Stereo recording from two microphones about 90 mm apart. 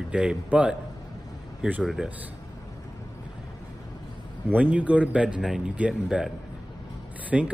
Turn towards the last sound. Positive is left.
turn(degrees=-15)  # may be behind; listen again after turning